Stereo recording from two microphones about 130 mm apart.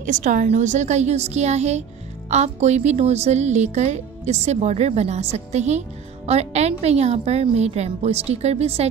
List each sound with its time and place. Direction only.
0.0 s a woman's voice: 75° right (ahead or behind); by 8.8 s 55° right (ahead or behind)